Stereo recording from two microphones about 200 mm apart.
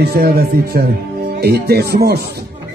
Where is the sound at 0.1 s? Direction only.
50° right (ahead or behind).